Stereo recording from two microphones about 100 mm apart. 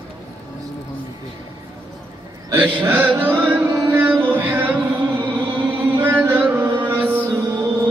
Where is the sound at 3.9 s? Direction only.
25° right (ahead or behind).